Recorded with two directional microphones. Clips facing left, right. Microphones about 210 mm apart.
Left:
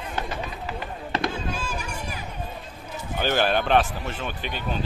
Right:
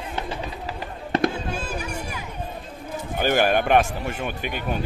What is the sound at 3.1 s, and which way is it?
Speech, 10° right (ahead or behind).